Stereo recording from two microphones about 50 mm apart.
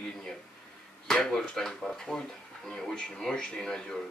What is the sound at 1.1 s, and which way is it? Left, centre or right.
Speech, centre.